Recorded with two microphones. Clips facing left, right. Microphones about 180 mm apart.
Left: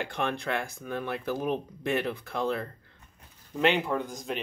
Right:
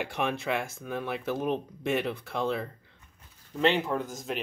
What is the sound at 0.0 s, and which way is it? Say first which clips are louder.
Speech: right 1 dB; 5° right (ahead or behind).